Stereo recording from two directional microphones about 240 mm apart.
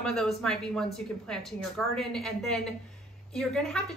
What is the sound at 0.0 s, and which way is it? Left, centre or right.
A woman's voice, centre.